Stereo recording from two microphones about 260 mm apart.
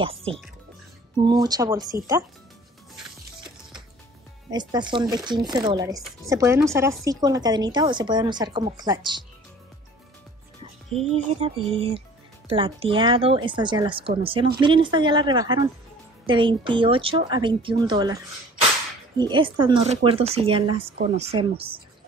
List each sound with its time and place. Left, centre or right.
0.0 s speech: right
4.5 s speech: centre
11.3 s speech: right
19.3 s speech: centre